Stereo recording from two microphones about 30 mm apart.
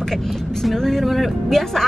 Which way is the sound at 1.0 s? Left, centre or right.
Centre.